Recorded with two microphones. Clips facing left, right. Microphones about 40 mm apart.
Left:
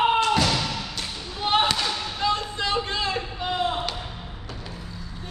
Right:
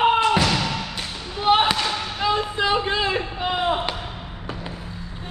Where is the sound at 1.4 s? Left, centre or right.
Centre; by 3.9 s right.